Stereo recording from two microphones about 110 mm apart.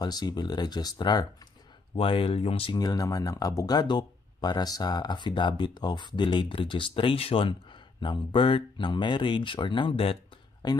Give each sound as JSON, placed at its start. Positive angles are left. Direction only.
{"t": 0.0, "sound": "speech", "side_deg": 40}
{"t": 2.0, "sound": "speech", "side_deg": 55}
{"t": 8.0, "sound": "speech", "side_deg": 45}
{"t": 10.6, "sound": "speech", "side_deg": 40}